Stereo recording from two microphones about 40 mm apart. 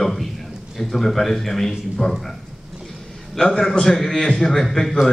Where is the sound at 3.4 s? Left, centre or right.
Centre.